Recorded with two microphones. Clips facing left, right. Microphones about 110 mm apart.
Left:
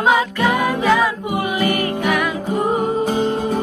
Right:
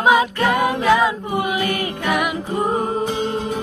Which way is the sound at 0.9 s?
20° right (ahead or behind).